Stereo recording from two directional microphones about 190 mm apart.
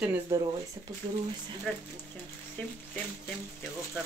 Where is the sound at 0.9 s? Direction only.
15° right (ahead or behind).